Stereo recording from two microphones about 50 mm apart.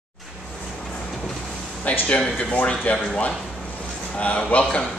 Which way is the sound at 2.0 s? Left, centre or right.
Left.